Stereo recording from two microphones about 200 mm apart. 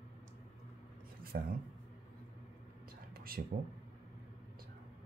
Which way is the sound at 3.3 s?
50° right (ahead or behind).